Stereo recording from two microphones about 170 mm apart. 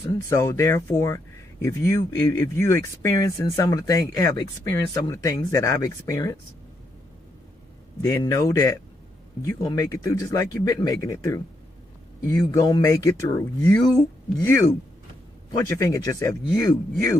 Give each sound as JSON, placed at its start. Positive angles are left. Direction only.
{"t": 0.0, "sound": "speech", "side_deg": 20}
{"t": 8.0, "sound": "speech", "side_deg": 20}